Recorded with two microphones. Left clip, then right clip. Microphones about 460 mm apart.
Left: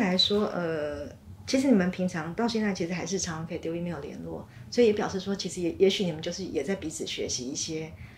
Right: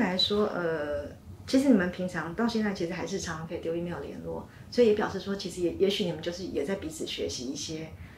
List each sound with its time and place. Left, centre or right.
0.0 s a sound: left
1.5 s speech: left
4.7 s speech: left